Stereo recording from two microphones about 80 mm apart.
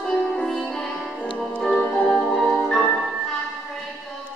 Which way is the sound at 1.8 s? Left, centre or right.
Centre.